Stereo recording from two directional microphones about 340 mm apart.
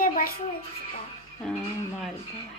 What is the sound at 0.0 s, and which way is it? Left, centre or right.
Music, left.